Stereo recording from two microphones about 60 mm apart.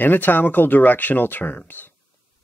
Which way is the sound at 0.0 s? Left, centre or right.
Left.